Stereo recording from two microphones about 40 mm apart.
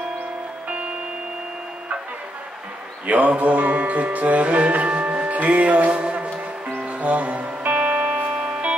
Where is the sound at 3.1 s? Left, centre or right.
Right.